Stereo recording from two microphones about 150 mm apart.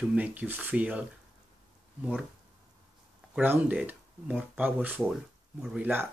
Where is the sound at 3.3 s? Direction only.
10° right (ahead or behind).